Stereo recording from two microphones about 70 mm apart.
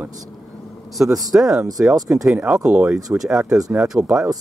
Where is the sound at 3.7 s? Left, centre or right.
Centre.